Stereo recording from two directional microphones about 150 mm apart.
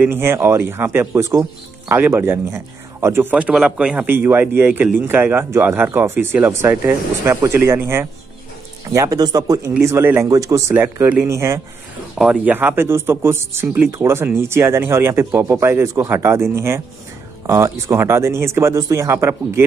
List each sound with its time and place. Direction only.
0.0 s speech: 15° right (ahead or behind)
12.2 s speech: 5° right (ahead or behind)